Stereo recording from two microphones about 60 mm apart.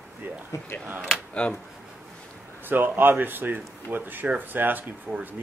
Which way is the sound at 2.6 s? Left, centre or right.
Right.